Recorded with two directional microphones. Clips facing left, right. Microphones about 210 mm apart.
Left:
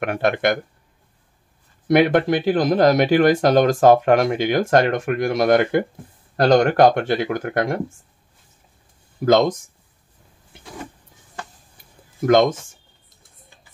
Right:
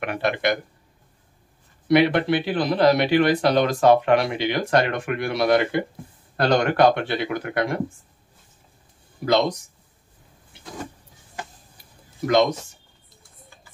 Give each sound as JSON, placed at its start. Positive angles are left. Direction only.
{"t": 0.0, "sound": "speech", "side_deg": 50}
{"t": 1.9, "sound": "speech", "side_deg": 50}
{"t": 9.2, "sound": "speech", "side_deg": 45}
{"t": 12.3, "sound": "speech", "side_deg": 50}